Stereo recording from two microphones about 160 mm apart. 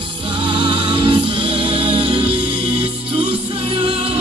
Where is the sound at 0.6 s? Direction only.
30° right (ahead or behind).